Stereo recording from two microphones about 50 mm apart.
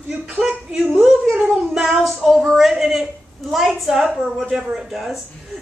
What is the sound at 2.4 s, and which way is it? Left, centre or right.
A woman's voice, centre.